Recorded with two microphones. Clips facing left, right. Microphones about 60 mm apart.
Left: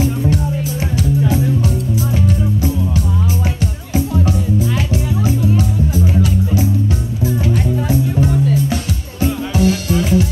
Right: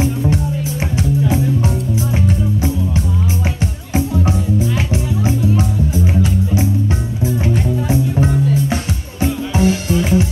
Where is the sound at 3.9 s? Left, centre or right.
Right.